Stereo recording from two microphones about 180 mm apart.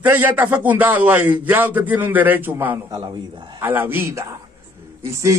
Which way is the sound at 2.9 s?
25° right (ahead or behind).